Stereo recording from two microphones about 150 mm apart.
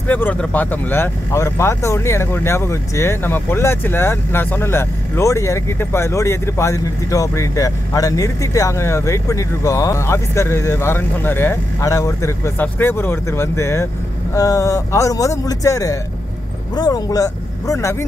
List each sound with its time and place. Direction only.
0.1 s a man's voice: 10° left (ahead or behind)